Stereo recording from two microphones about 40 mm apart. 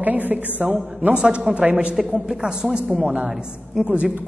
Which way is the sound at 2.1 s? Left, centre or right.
Centre.